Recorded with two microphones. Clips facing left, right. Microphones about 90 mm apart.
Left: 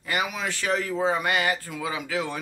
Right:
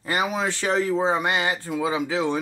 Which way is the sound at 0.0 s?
30° right (ahead or behind).